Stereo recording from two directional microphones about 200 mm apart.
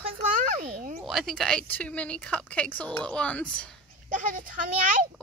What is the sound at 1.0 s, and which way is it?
Speech, centre (ahead or behind).